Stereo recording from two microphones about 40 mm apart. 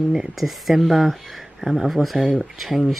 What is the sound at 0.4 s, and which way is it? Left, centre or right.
Speech, centre.